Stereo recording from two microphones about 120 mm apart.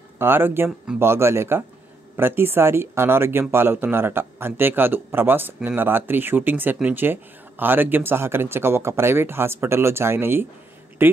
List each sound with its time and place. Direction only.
0.2 s speech: 20° right (ahead or behind)